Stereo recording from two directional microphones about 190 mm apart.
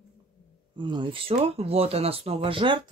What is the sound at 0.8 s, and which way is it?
Speech, 25° right (ahead or behind).